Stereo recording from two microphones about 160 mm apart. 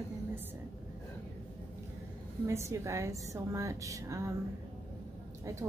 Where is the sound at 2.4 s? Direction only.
15° right (ahead or behind).